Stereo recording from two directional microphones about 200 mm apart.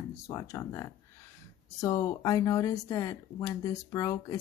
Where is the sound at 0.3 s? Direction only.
15° left (ahead or behind).